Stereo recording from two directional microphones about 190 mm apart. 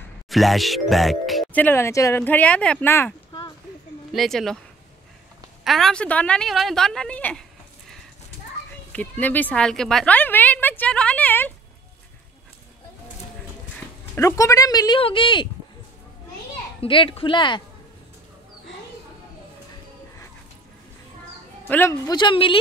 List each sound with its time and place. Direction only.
0.3 s speech: centre (ahead or behind)
4.1 s a woman's voice: centre (ahead or behind)
5.6 s a woman's voice: centre (ahead or behind)
8.9 s speech: 10° left (ahead or behind)
14.1 s speech: 15° left (ahead or behind)
16.8 s speech: 25° left (ahead or behind)
21.6 s speech: 10° left (ahead or behind)
22.1 s speech: 25° left (ahead or behind)